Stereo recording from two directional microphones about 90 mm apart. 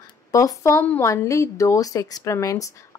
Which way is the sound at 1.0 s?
35° left (ahead or behind).